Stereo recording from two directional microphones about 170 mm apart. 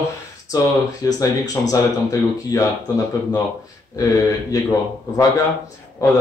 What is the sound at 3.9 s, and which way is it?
Speech, 20° left (ahead or behind).